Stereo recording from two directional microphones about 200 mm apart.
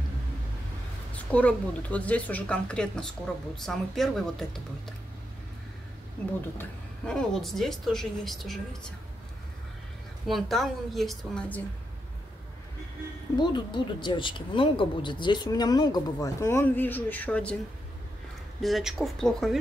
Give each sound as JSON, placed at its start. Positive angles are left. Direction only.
{"t": 1.1, "sound": "a woman's voice", "side_deg": 5}
{"t": 6.6, "sound": "speech", "side_deg": 5}
{"t": 10.2, "sound": "speech", "side_deg": 0}
{"t": 13.4, "sound": "speech", "side_deg": 20}
{"t": 18.6, "sound": "speech", "side_deg": 0}